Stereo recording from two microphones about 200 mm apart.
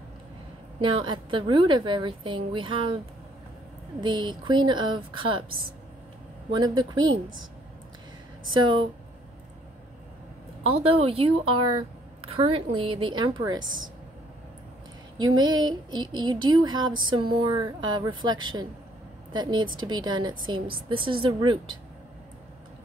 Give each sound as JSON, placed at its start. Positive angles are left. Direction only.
{"t": 0.7, "sound": "a woman's voice", "side_deg": -25}
{"t": 4.0, "sound": "a woman's voice", "side_deg": -25}
{"t": 6.5, "sound": "a woman's voice", "side_deg": -20}
{"t": 10.6, "sound": "a woman's voice", "side_deg": -30}
{"t": 15.1, "sound": "a woman's voice", "side_deg": -20}